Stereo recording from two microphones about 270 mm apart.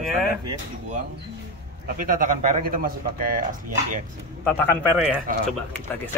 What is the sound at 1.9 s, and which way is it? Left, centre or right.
Speech, right.